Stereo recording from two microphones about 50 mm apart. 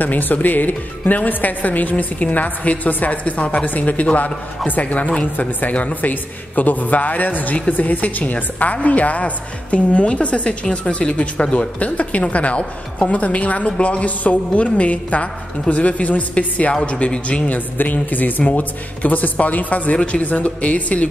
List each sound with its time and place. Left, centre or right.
0.0 s a woman's voice: left
17.5 s a woman's voice: left